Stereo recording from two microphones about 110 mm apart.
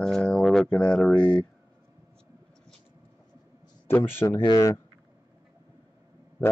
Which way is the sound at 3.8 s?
20° left (ahead or behind).